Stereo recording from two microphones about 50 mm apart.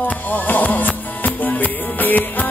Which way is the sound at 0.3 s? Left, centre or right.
Left.